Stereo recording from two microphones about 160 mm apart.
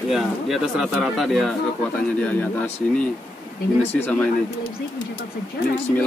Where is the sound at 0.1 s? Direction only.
5° right (ahead or behind).